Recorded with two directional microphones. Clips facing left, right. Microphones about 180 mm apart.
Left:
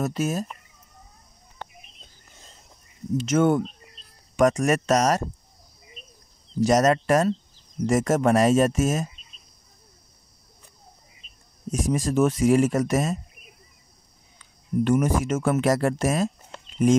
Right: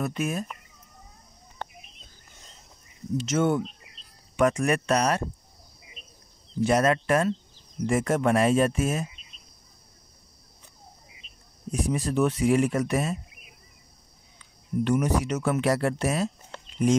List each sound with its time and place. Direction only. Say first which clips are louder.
0.0 s speech: left 3 dB; 40° left (ahead or behind)
3.2 s speech: left 4 dB; 50° left (ahead or behind)
6.6 s speech: left 3 dB; 40° left (ahead or behind)
11.8 s speech: left 3 dB; 45° left (ahead or behind)
14.9 s speech: left 2 dB; 50° left (ahead or behind)